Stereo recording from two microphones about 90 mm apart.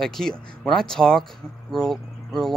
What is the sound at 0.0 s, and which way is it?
Speech, 5° left (ahead or behind).